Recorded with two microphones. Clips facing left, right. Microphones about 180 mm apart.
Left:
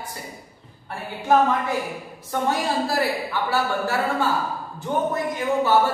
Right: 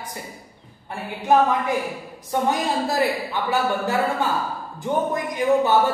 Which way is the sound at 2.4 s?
20° right (ahead or behind).